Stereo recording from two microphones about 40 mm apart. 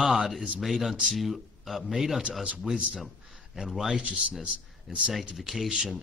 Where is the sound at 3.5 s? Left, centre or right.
Centre.